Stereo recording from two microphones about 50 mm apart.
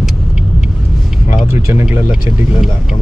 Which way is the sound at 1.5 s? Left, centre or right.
Right.